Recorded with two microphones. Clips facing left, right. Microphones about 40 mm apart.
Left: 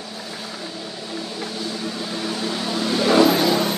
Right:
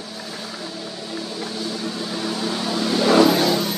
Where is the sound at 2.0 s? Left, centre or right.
Centre.